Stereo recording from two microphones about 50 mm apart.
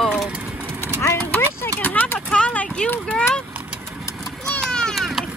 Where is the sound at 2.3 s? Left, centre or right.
Left.